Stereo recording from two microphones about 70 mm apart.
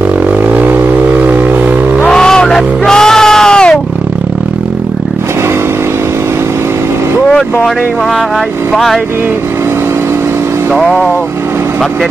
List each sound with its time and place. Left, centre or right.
0.5 s vehicle: right
2.0 s music: centre
8.7 s music: centre
10.7 s music: centre